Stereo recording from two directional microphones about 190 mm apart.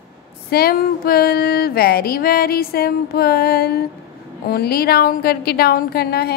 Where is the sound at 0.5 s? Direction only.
55° left (ahead or behind).